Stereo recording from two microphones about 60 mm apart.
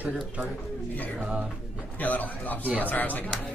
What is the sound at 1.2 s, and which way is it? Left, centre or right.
Speech, centre.